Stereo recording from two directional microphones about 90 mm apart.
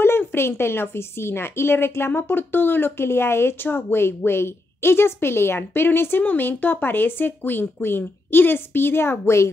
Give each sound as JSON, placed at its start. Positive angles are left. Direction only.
{"t": 0.0, "sound": "a woman's voice", "side_deg": 25}